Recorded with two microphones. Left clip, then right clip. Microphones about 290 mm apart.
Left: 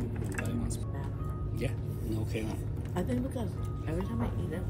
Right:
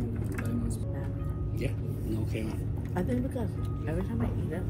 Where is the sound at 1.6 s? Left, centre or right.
Left.